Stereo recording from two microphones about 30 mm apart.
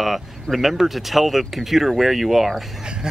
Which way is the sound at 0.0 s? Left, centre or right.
Centre.